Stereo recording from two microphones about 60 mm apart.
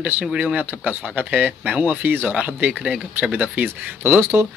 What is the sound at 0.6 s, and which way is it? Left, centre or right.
Speech, right.